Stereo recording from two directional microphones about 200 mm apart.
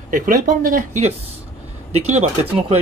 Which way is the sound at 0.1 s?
45° right (ahead or behind).